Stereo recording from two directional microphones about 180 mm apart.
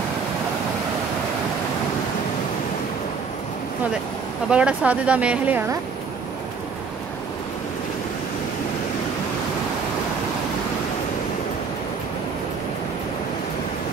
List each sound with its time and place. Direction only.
4.5 s speech: 5° right (ahead or behind)